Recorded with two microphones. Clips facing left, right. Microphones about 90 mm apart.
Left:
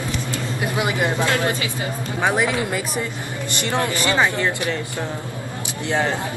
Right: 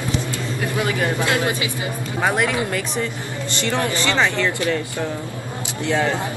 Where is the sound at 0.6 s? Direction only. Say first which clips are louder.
Even; 20° left (ahead or behind).